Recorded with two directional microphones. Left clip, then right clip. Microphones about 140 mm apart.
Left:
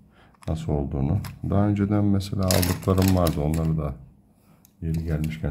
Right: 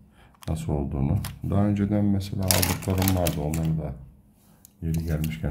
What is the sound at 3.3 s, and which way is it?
Speech, 90° left.